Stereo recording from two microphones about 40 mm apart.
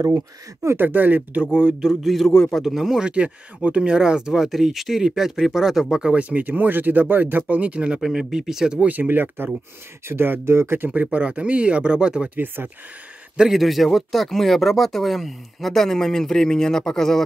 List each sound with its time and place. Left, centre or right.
0.7 s speech: right
1.8 s speech: centre
2.3 s a man's voice: centre
2.6 s speech: centre
3.0 s speech: right
6.1 s speech: right
6.4 s speech: right
8.0 s speech: centre
8.9 s speech: right
10.0 s speech: right
11.1 s speech: right
12.6 s speech: right
13.5 s speech: centre